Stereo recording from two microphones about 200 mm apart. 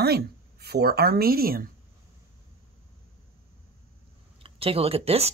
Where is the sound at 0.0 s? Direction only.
50° right (ahead or behind).